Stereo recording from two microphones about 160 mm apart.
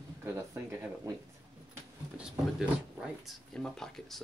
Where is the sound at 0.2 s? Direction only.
15° right (ahead or behind).